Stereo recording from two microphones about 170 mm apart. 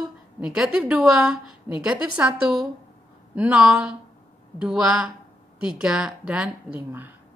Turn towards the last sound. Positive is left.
turn(degrees=-10)  # may be behind; listen again after turning